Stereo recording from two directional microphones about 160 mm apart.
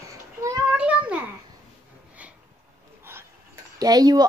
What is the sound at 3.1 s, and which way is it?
Dishes, 15° right (ahead or behind).